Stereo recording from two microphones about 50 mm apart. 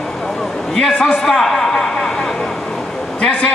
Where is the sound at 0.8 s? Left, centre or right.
Centre.